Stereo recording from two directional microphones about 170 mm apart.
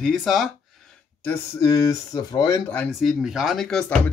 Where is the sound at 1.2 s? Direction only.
15° left (ahead or behind).